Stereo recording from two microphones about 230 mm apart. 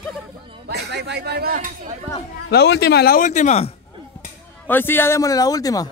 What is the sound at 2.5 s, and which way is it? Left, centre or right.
Speech, left.